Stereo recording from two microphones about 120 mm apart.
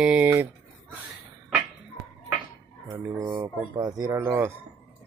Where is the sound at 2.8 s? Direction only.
25° right (ahead or behind).